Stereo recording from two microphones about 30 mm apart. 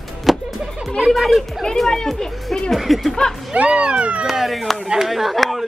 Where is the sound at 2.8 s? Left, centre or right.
Centre.